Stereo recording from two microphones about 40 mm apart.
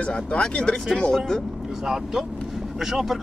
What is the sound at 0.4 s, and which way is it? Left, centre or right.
Speech, left.